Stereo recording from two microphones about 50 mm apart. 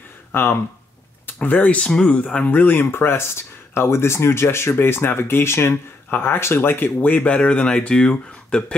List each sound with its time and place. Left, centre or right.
0.3 s speech: left
1.2 s speech: left
6.0 s speech: left; by 8.7 s centre